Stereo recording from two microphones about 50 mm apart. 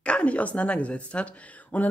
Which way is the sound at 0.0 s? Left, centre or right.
Left.